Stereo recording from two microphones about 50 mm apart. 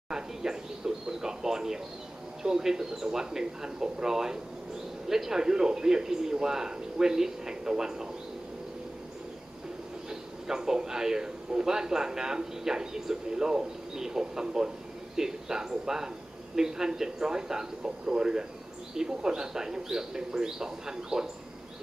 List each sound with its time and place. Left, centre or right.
0.1 s a sound: centre
2.4 s a man's voice: centre
10.0 s a man's voice: centre